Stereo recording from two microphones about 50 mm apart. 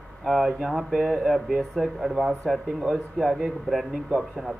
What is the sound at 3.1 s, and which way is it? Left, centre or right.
Speech, centre.